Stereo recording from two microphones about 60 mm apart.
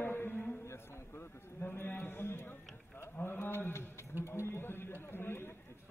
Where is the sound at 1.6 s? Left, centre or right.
Left.